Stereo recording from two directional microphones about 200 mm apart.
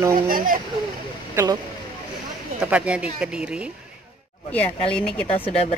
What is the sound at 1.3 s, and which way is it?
Speech, 15° right (ahead or behind).